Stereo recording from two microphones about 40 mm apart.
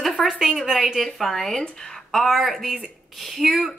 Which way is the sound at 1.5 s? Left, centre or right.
Centre.